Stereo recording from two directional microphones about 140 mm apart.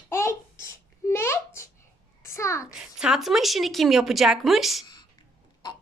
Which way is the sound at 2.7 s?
5° right (ahead or behind).